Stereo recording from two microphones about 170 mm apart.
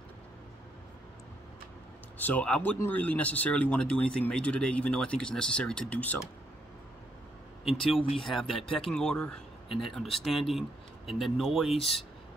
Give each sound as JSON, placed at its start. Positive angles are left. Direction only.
{"t": 2.1, "sound": "speech", "side_deg": 10}
{"t": 8.1, "sound": "speech", "side_deg": 0}
{"t": 11.7, "sound": "speech", "side_deg": 35}